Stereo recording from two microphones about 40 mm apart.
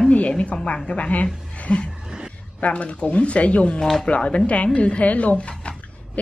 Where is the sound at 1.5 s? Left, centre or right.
Left.